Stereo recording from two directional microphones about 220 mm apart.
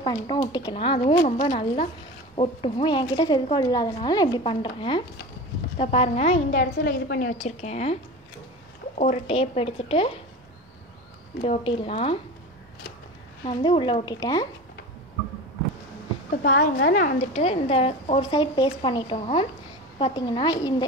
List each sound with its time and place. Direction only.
0.0 s a woman's voice: 20° left (ahead or behind)
11.4 s a woman's voice: 25° left (ahead or behind)
13.5 s a woman's voice: 20° left (ahead or behind)
16.3 s a woman's voice: 35° left (ahead or behind); by 20.7 s 20° left (ahead or behind)